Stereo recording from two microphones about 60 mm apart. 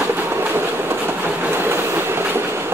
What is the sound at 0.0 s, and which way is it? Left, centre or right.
Train, right.